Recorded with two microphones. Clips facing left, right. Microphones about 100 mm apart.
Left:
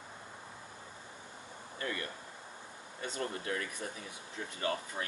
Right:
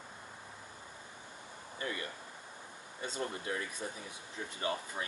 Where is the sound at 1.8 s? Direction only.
20° right (ahead or behind).